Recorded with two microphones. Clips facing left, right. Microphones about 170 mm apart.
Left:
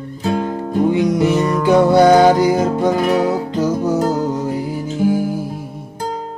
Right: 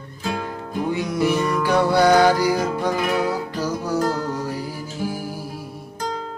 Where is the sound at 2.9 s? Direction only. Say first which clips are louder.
Left 6 dB; 40° left (ahead or behind).